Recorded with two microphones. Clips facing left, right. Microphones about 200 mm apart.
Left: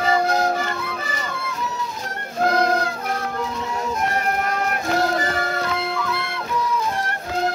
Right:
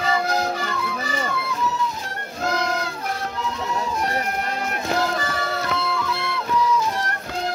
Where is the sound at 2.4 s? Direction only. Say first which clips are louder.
Left 5 dB; 50° left (ahead or behind).